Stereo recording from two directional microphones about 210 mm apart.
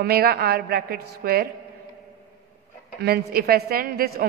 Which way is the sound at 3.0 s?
50° right (ahead or behind).